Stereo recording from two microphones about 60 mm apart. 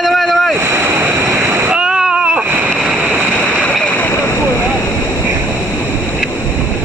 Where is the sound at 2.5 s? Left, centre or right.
Right.